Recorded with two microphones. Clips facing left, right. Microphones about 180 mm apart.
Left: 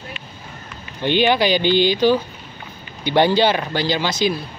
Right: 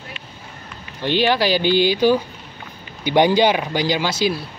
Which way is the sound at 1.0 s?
Centre (ahead or behind).